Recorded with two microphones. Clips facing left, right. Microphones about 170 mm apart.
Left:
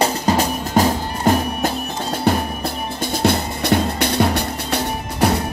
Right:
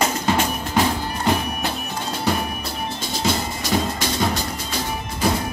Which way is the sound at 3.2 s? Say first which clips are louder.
Left 6 dB; 60° left (ahead or behind).